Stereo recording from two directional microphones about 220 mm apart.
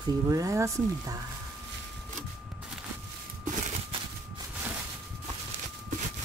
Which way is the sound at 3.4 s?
35° right (ahead or behind).